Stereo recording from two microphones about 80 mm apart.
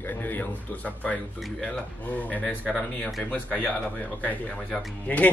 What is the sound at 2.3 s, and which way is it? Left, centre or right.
Speech, centre.